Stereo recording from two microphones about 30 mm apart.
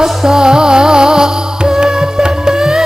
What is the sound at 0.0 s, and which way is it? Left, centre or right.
Music, centre.